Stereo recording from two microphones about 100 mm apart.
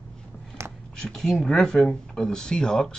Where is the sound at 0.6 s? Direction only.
30° right (ahead or behind).